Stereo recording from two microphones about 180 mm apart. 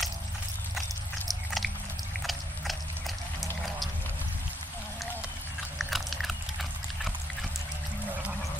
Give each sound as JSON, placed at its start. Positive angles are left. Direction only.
{"t": 0.7, "sound": "biting", "side_deg": 0}
{"t": 5.8, "sound": "biting", "side_deg": 0}
{"t": 8.1, "sound": "toilet flush", "side_deg": -10}